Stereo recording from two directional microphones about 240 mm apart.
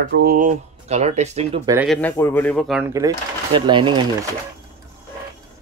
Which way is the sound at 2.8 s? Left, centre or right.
Centre.